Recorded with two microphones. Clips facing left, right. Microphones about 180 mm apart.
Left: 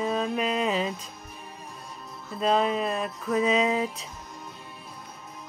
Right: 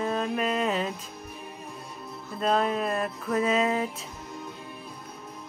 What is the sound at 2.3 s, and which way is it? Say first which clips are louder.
Music: left 1 dB; centre (ahead or behind).